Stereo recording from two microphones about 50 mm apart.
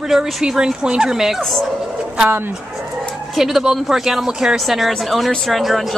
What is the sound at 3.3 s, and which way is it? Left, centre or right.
A woman's voice, centre.